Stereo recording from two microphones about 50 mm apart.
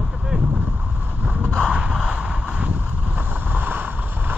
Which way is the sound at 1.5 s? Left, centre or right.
Centre.